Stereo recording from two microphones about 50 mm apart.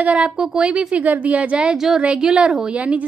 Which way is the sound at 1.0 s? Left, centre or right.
Right.